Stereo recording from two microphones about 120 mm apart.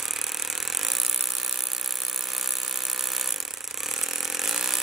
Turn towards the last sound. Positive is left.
turn(degrees=-5)  # may be behind; listen again after turning